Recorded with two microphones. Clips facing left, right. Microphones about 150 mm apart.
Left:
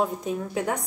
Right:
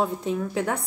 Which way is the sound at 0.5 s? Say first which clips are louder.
Right 1 dB; 20° left (ahead or behind).